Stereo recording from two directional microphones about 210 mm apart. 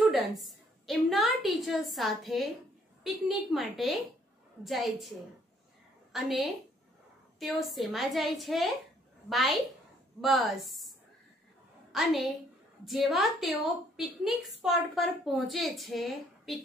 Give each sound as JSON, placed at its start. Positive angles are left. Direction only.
{"t": 0.1, "sound": "a woman's voice", "side_deg": 0}
{"t": 6.1, "sound": "a woman's voice", "side_deg": 0}